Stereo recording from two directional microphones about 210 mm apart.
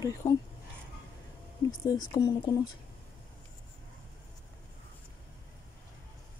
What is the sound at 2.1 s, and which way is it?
Speech, 20° left (ahead or behind).